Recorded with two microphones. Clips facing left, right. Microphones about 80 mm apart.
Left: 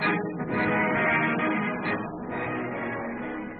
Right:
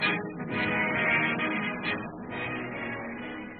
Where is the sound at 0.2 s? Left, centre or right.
Centre.